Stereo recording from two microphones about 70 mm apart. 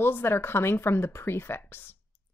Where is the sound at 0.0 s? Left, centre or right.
Left.